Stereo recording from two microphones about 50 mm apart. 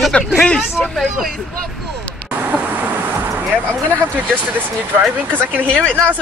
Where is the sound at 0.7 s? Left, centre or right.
Centre.